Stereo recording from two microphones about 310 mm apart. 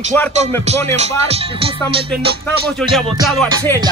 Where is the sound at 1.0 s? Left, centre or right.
Centre.